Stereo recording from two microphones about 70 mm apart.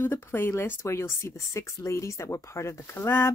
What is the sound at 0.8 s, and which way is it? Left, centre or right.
Speech, left.